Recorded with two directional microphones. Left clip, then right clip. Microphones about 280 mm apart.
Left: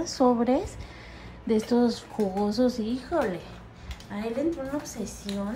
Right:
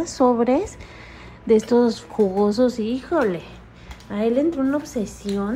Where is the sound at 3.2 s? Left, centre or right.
Centre.